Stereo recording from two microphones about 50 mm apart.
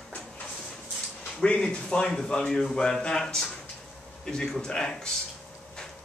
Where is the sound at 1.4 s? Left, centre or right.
Centre.